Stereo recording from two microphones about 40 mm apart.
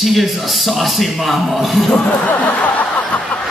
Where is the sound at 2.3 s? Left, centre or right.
Left.